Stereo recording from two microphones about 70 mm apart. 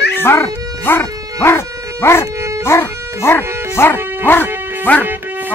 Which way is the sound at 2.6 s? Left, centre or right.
Left.